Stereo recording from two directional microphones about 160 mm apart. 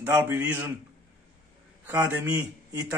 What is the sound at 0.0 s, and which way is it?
Speech, 15° right (ahead or behind).